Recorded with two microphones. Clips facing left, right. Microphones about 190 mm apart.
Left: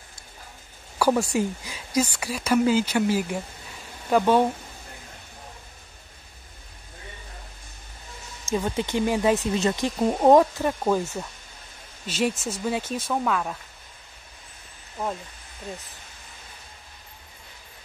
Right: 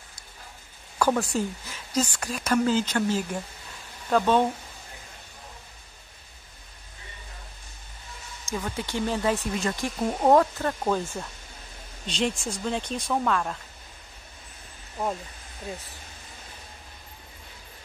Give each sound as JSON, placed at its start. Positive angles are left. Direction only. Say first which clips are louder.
{"t": 0.9, "sound": "speech", "louder": "left 3 dB", "side_deg": 10}
{"t": 8.5, "sound": "speech", "louder": "left 5 dB", "side_deg": 25}